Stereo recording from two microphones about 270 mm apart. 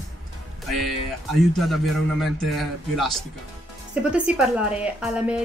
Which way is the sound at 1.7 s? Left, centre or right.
Centre.